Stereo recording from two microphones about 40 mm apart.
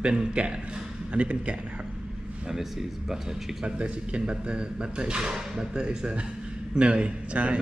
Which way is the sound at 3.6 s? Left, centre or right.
Right.